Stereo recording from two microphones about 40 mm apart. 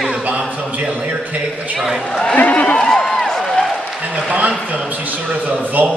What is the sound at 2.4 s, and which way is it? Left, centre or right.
Speech, left.